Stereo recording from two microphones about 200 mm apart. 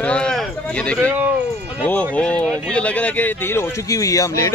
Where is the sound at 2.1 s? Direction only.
5° left (ahead or behind).